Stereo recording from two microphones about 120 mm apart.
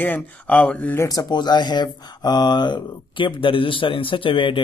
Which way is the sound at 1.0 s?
35° left (ahead or behind).